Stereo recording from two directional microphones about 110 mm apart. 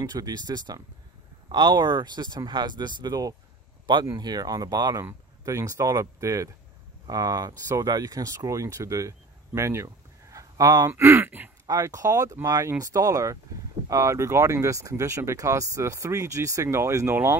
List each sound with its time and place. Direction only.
0.0 s speech: 35° right (ahead or behind)
10.3 s a sound: 35° right (ahead or behind)
10.9 s speech: 25° right (ahead or behind)
11.6 s speech: 30° right (ahead or behind)